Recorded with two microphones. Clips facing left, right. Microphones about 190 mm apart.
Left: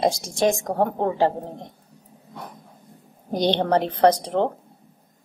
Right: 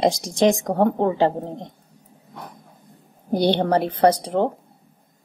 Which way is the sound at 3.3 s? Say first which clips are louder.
Right 2 dB; 10° right (ahead or behind).